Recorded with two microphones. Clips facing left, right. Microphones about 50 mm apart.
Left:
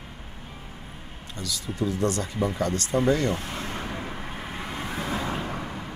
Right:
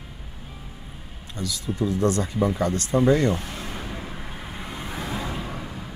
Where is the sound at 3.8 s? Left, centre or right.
Centre.